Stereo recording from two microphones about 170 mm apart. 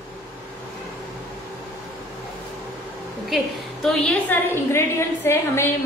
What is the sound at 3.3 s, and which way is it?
Speech, centre (ahead or behind).